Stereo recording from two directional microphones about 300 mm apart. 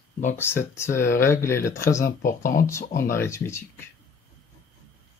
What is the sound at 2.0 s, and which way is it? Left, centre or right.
Speech, left.